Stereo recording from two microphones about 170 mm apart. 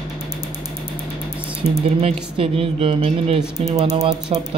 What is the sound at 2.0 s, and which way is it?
A man's voice, 35° right (ahead or behind).